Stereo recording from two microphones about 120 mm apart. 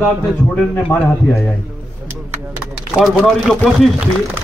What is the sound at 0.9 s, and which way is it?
Speech, 10° left (ahead or behind).